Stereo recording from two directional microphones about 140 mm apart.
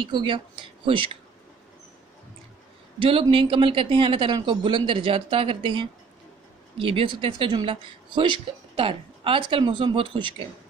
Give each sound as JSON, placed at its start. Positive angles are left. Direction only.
{"t": 0.0, "sound": "speech", "side_deg": -35}
{"t": 3.0, "sound": "speech", "side_deg": -40}